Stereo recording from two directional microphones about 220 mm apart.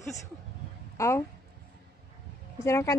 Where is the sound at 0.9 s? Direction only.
15° left (ahead or behind).